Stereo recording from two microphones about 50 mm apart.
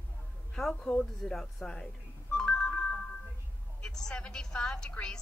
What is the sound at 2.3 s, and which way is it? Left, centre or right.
Ringtone, centre.